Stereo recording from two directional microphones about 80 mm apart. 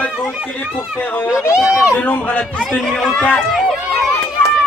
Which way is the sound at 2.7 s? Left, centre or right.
Centre.